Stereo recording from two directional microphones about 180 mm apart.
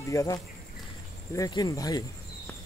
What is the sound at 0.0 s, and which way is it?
Speech, 15° left (ahead or behind).